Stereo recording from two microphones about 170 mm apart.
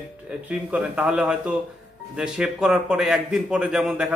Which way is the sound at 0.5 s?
10° right (ahead or behind).